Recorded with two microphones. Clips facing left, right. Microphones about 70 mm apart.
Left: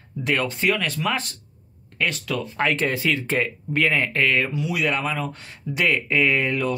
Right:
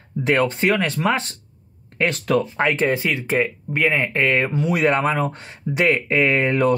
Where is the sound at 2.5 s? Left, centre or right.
Centre.